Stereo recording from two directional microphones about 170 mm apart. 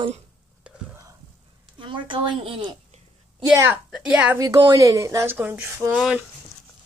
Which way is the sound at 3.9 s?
5° right (ahead or behind).